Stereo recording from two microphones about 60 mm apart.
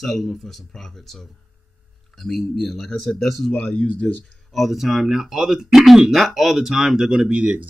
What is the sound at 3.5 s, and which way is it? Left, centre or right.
Speech, centre.